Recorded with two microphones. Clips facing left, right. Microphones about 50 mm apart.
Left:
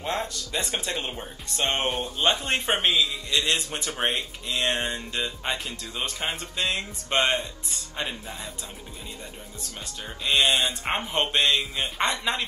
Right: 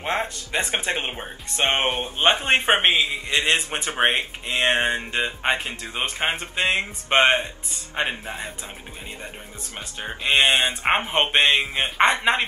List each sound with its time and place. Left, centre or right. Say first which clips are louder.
0.0 s speech: right 4 dB; right
9.9 s speech: right 4 dB; right